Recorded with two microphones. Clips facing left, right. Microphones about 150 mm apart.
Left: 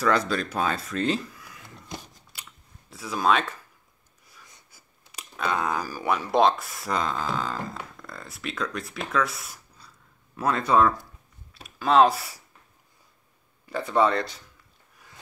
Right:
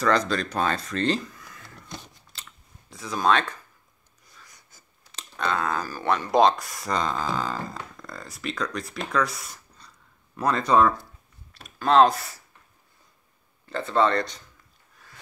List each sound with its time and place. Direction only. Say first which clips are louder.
0.0 s speech: right 1 dB; 5° left (ahead or behind)
4.6 s speech: even; 10° left (ahead or behind)
13.7 s speech: even; 10° left (ahead or behind)